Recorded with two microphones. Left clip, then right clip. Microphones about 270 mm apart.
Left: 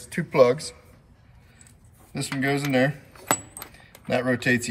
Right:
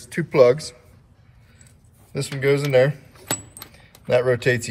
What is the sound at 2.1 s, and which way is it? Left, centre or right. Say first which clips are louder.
Speech: right 5 dB; right.